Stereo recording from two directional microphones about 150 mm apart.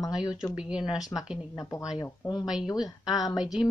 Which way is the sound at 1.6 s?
25° left (ahead or behind).